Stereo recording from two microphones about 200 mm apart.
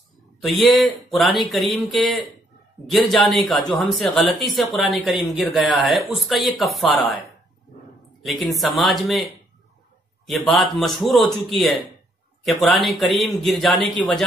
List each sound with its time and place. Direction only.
0.4 s speech: centre (ahead or behind)
3.4 s speech: 5° left (ahead or behind)
8.3 s speech: centre (ahead or behind)